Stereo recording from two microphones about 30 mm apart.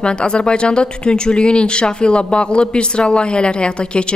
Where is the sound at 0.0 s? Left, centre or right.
Left.